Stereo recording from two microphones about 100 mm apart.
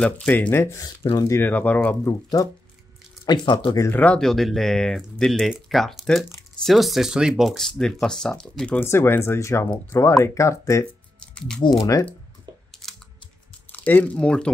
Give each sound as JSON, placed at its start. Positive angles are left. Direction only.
{"t": 0.0, "sound": "speech", "side_deg": 15}
{"t": 1.4, "sound": "speech", "side_deg": 15}
{"t": 2.0, "sound": "speech", "side_deg": 35}
{"t": 3.3, "sound": "speech", "side_deg": 45}
{"t": 4.0, "sound": "speech", "side_deg": 5}
{"t": 8.7, "sound": "speech", "side_deg": 25}
{"t": 11.1, "sound": "a sound", "side_deg": 10}
{"t": 11.8, "sound": "speech", "side_deg": 35}
{"t": 12.8, "sound": "typing", "side_deg": 5}
{"t": 13.7, "sound": "speech", "side_deg": 15}